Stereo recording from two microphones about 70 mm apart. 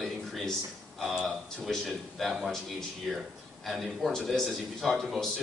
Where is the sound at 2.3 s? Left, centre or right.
Centre.